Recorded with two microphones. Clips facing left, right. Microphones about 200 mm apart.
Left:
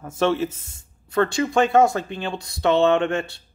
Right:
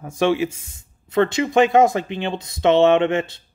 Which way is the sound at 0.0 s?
15° right (ahead or behind).